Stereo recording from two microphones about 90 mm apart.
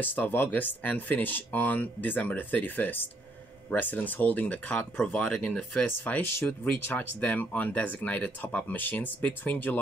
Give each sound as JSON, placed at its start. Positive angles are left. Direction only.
{"t": 0.0, "sound": "speech", "side_deg": 20}